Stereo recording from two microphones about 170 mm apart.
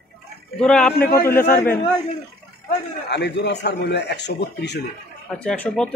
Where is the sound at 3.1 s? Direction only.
80° left.